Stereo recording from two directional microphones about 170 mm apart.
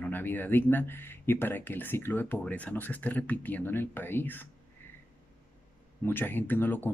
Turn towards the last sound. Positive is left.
turn(degrees=10)  # may be behind; listen again after turning